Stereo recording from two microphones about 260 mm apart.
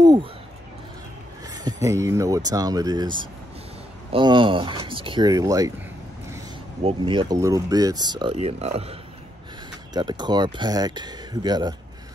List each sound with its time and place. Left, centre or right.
0.0 s speech: centre
1.5 s speech: centre
6.8 s speech: right
9.9 s speech: centre